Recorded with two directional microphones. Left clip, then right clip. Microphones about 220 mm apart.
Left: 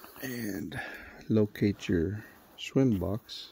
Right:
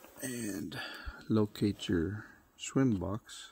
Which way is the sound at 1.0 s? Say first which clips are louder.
Left 1 dB; 35° left (ahead or behind).